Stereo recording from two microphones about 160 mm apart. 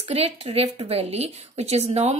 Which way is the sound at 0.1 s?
40° right (ahead or behind).